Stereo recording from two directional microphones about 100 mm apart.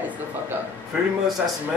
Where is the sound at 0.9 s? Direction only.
5° right (ahead or behind).